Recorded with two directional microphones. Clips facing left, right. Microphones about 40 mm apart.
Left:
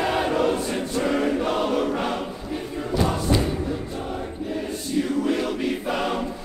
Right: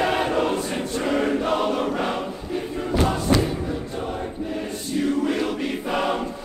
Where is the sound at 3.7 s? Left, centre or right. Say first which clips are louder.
Right 1 dB; centre.